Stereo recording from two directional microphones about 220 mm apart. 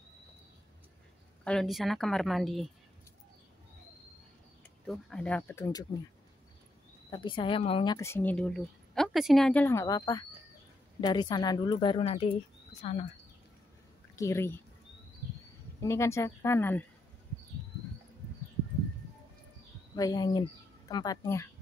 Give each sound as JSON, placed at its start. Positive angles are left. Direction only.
{"t": 1.4, "sound": "a woman's voice", "side_deg": 5}
{"t": 4.8, "sound": "speech", "side_deg": 5}
{"t": 7.1, "sound": "a woman's voice", "side_deg": 20}
{"t": 14.1, "sound": "speech", "side_deg": 15}
{"t": 15.8, "sound": "speech", "side_deg": 15}
{"t": 20.0, "sound": "speech", "side_deg": 15}